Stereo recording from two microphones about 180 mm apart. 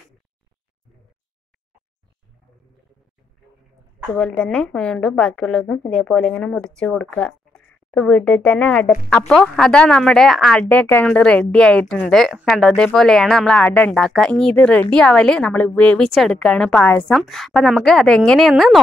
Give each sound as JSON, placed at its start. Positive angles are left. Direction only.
{"t": 4.1, "sound": "a woman's voice", "side_deg": 5}